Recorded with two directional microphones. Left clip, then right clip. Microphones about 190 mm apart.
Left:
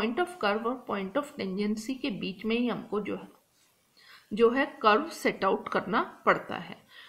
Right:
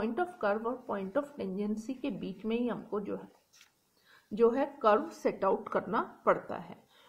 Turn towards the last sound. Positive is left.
turn(degrees=30)  # may be behind; listen again after turning